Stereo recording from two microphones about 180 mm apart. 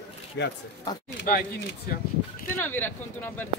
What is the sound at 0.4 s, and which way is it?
Speech, 75° left (ahead or behind).